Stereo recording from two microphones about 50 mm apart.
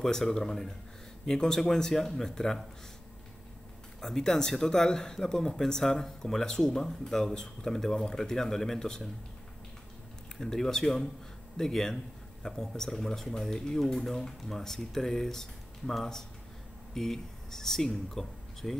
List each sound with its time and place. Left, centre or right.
0.0 s speech: centre
4.0 s speech: centre
10.3 s speech: centre